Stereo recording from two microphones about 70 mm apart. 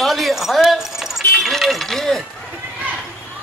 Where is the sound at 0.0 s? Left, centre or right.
Centre.